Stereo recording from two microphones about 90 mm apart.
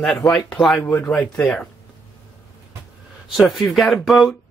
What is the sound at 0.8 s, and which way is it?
Speech, 20° left (ahead or behind).